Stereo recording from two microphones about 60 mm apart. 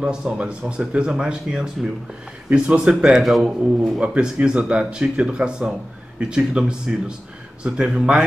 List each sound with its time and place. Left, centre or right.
0.0 s a man's voice: centre
4.0 s speech: right